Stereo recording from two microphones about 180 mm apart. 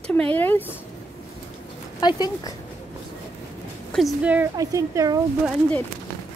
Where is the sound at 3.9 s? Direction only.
5° right (ahead or behind).